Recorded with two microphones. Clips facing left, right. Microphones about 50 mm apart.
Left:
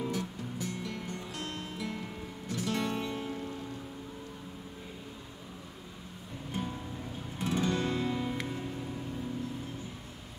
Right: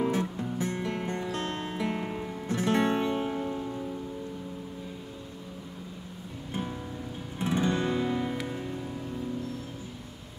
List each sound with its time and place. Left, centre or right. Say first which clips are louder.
0.0 s music: right 7 dB; right
6.5 s music: right 3 dB; right